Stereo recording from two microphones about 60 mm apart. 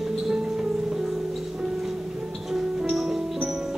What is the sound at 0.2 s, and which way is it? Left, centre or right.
Music, centre.